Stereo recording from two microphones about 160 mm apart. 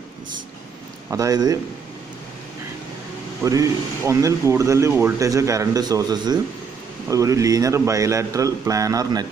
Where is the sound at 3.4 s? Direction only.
20° right (ahead or behind).